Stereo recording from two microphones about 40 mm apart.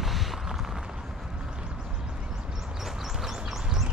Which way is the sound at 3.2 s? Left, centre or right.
Centre.